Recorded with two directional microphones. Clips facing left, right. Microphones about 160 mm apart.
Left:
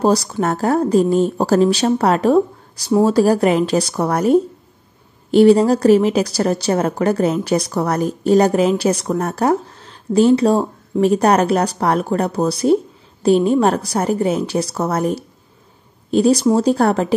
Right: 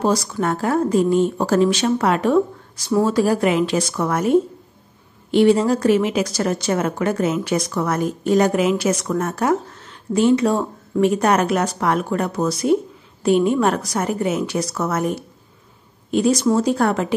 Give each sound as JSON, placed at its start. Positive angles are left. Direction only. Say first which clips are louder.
{"t": 0.0, "sound": "a woman's voice", "louder": "left 3 dB", "side_deg": 35}